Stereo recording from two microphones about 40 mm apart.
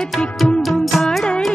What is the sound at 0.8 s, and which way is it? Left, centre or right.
Music, centre.